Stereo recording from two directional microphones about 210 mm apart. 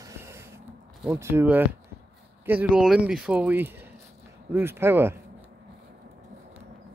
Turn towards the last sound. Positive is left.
turn(degrees=-10)  # may be behind; listen again after turning